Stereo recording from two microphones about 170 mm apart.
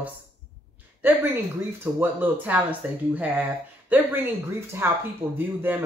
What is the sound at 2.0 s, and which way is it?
Speech, 10° right (ahead or behind).